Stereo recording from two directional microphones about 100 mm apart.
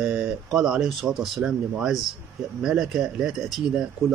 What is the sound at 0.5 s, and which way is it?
Speech, 5° right (ahead or behind).